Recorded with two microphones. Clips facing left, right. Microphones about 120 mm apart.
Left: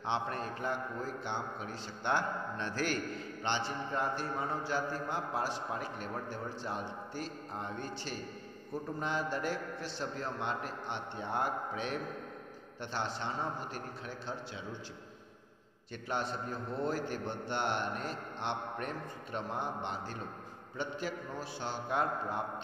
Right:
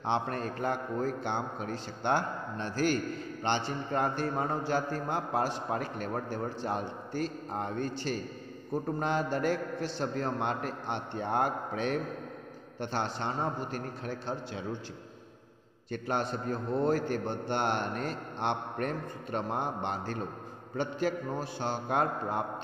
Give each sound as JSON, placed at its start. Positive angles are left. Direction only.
{"t": 0.0, "sound": "a man's voice", "side_deg": -50}
{"t": 3.4, "sound": "a man's voice", "side_deg": -50}
{"t": 15.9, "sound": "a man's voice", "side_deg": -55}